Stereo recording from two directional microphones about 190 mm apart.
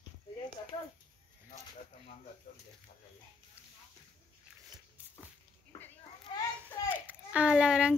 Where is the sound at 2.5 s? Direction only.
50° left (ahead or behind).